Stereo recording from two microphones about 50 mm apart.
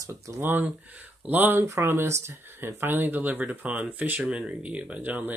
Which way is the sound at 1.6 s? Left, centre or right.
Right.